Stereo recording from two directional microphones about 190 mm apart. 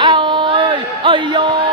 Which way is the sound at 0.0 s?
25° right (ahead or behind).